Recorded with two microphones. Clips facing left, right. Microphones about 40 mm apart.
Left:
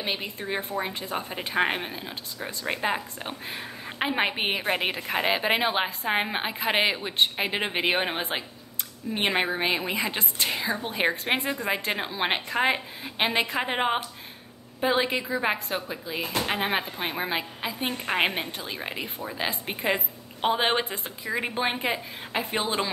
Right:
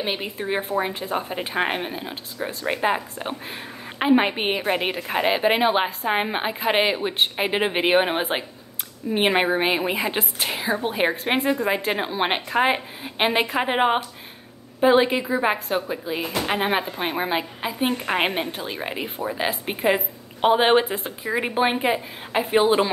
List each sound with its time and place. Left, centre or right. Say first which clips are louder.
0.0 s a woman's voice: right 4 dB; centre